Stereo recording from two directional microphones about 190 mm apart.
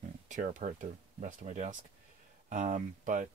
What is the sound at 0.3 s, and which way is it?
Speech, 40° right (ahead or behind).